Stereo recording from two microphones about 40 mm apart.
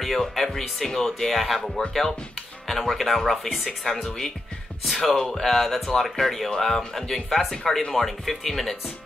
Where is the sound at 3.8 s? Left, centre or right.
Centre.